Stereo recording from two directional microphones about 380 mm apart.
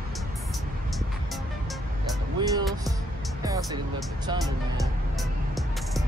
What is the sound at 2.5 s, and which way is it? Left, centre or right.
Music, centre.